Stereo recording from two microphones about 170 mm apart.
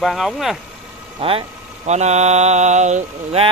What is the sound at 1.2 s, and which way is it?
Mantra, 35° right (ahead or behind).